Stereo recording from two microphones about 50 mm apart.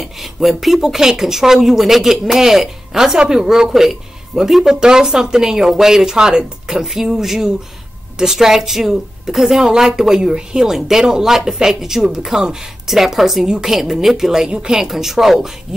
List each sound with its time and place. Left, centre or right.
0.0 s a woman's voice: centre